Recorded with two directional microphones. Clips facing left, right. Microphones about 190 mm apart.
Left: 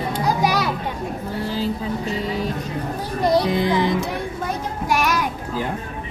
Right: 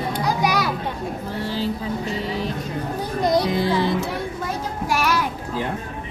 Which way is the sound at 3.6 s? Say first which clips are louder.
Left 1 dB; 15° left (ahead or behind).